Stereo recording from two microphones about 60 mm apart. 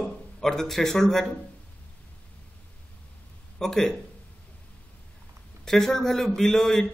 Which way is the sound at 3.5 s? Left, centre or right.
Centre.